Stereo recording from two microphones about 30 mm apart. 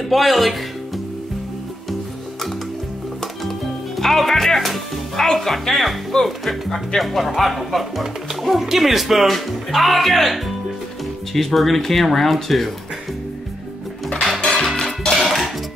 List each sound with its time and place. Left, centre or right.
0.1 s music: centre
3.2 s music: centre
5.2 s speech: centre
5.5 s speech: centre
14.4 s music: left
15.1 s music: centre